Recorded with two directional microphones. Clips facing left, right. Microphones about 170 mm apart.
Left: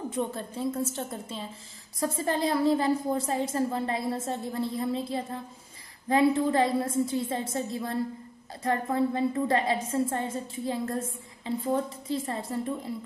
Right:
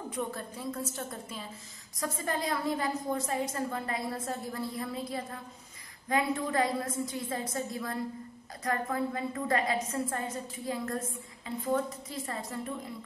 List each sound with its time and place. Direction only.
0.1 s a woman's voice: 25° left (ahead or behind)